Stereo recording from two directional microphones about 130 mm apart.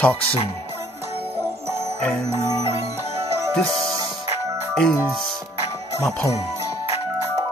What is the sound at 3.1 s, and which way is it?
Music, 50° right (ahead or behind).